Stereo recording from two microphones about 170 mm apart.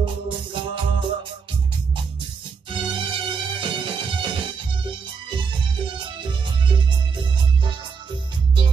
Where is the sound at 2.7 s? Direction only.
30° right (ahead or behind).